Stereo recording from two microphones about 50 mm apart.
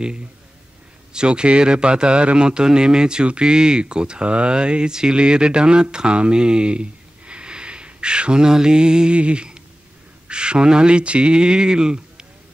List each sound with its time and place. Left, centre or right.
1.1 s a man's voice: centre